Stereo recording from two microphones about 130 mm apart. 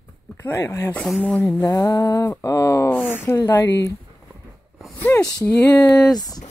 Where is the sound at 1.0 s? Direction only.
5° left (ahead or behind).